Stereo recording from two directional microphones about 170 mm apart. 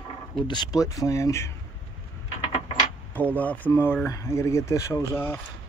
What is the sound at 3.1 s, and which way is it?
Speech, 10° left (ahead or behind).